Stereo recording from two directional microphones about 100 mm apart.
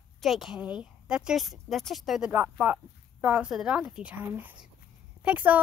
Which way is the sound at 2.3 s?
20° right (ahead or behind).